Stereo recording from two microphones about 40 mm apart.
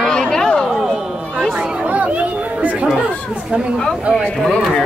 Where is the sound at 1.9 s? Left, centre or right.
Right.